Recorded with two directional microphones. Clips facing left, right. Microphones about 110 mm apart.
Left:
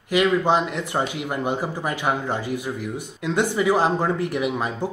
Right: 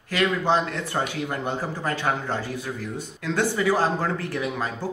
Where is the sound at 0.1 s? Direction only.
15° left (ahead or behind).